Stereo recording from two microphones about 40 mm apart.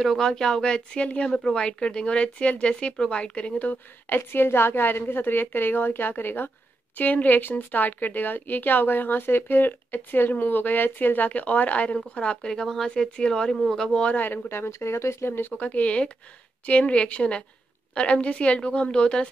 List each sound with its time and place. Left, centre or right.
0.0 s speech: centre; by 3.7 s left
4.1 s a woman's voice: left
7.0 s speech: left
12.2 s speech: left
14.1 s speech: left
14.5 s speech: left
15.5 s speech: left